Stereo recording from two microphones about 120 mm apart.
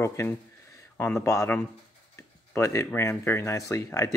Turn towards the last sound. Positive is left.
turn(degrees=25)  # may be behind; listen again after turning